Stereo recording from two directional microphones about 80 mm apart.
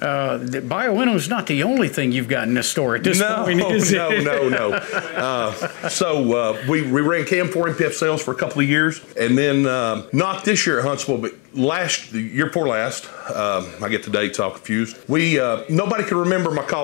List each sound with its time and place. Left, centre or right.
0.0 s speech: left